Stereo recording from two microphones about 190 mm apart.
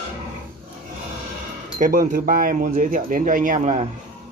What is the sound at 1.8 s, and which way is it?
Speech, 45° right (ahead or behind).